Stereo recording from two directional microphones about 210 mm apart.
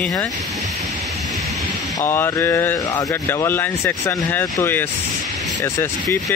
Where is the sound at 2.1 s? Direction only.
15° left (ahead or behind).